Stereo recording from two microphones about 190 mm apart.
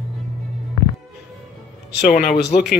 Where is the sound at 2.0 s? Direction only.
45° left (ahead or behind).